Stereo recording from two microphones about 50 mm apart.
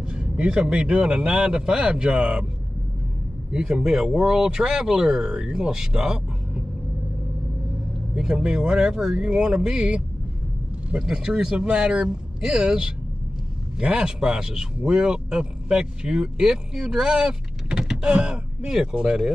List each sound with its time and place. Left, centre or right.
0.0 s speech: centre
3.5 s speech: centre
8.1 s speech: centre